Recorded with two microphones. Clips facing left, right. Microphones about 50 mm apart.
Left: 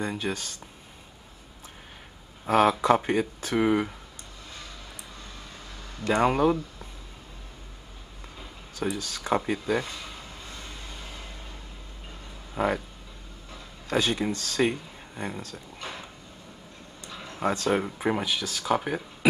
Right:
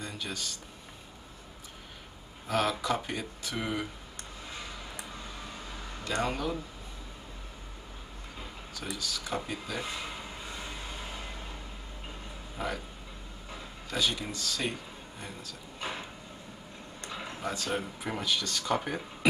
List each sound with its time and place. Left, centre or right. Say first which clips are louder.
0.0 s speech: left 8 dB; left
2.4 s speech: left 9 dB; left
4.5 s music: right 1 dB; centre
6.1 s speech: left 9 dB; left
8.9 s speech: left 6 dB; left
9.8 s vehicle: right 2 dB; centre
12.5 s speech: left 9 dB; left
13.8 s speech: left 6 dB; left
15.8 s a sound: right 2 dB; centre
17.1 s a sound: right 1 dB; centre
17.4 s speech: left 9 dB; left
18.2 s speech: left 2 dB; centre